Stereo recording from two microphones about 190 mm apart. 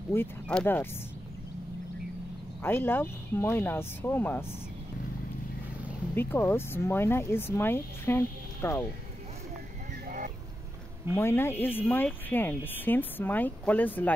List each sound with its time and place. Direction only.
0.1 s speech: 10° left (ahead or behind)
2.6 s speech: 10° left (ahead or behind)
6.1 s speech: 10° left (ahead or behind)
10.0 s vehicle: 45° right (ahead or behind)
11.1 s speech: 15° left (ahead or behind)